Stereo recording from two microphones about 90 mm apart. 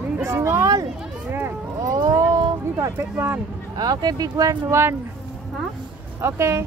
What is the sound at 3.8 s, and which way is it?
Speech, 50° right (ahead or behind).